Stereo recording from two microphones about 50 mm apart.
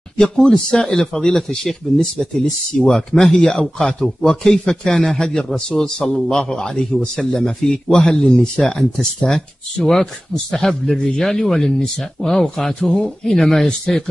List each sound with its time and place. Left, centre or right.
0.2 s a man's voice: centre
11.0 s speech: left
11.2 s a man's voice: centre